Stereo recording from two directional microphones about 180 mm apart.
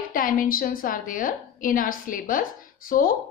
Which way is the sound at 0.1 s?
50° left (ahead or behind).